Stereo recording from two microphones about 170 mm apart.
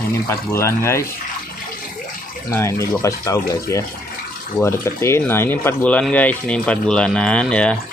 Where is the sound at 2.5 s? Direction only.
15° left (ahead or behind).